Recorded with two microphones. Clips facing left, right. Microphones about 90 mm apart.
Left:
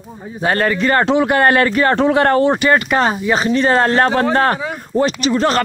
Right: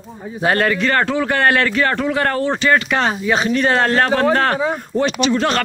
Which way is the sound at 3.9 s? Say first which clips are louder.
Left 2 dB; 20° left (ahead or behind).